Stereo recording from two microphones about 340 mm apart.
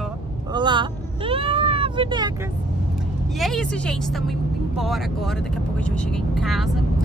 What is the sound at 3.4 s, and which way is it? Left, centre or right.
Speech, centre.